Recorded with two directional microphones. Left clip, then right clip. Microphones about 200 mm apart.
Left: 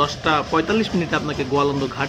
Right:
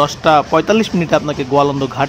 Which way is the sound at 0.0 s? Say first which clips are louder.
Right 8 dB; 50° right (ahead or behind).